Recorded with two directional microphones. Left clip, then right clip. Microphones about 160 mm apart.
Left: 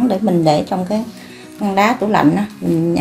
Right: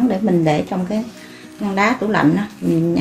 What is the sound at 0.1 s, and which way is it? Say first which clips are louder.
Speech: left 3 dB; 30° left (ahead or behind).